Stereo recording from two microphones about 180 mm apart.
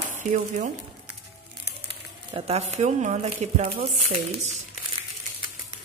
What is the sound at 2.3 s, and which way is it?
Speech, 35° right (ahead or behind).